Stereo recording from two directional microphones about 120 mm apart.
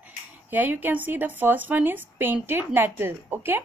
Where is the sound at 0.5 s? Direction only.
15° right (ahead or behind).